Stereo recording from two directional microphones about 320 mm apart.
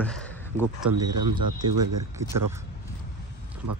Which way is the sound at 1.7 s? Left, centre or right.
Right.